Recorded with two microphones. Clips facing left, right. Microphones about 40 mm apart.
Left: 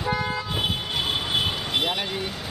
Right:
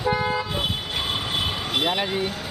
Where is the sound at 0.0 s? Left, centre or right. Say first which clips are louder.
Right 3 dB; centre.